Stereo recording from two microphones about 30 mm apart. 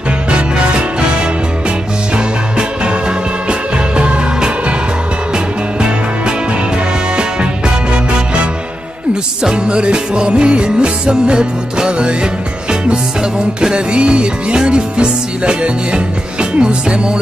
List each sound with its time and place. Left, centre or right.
0.3 s music: right
5.3 s music: right
9.4 s music: right